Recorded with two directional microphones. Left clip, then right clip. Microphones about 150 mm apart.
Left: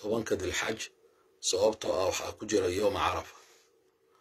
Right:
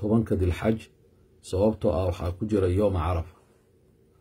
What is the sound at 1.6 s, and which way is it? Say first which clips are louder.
A man's voice: right 4 dB; 5° right (ahead or behind).